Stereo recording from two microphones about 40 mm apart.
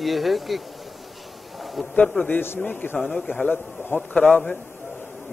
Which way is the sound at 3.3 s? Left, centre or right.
Left.